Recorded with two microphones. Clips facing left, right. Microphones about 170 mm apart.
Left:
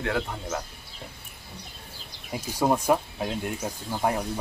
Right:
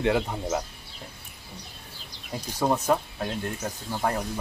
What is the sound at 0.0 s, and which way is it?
Speech, 15° right (ahead or behind).